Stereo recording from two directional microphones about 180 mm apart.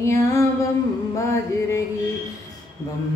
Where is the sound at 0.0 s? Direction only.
15° left (ahead or behind).